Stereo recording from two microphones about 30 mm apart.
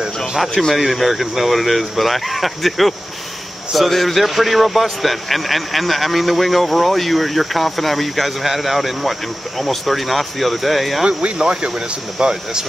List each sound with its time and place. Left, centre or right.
0.7 s a man's voice: centre
3.9 s a man's voice: centre
11.1 s speech: right